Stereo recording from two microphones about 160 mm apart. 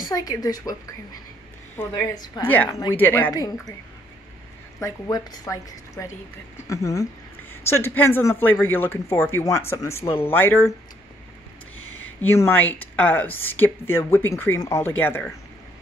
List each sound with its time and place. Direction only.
0.0 s a woman's voice: 25° left (ahead or behind)
2.4 s speech: 10° left (ahead or behind)
3.3 s a woman's voice: 20° left (ahead or behind)
4.7 s a woman's voice: 20° left (ahead or behind)
11.8 s speech: 10° left (ahead or behind)